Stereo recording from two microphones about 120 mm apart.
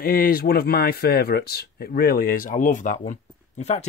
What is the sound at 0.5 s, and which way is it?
Speech, 90° left.